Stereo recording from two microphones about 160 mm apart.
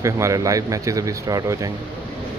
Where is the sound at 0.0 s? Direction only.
20° right (ahead or behind).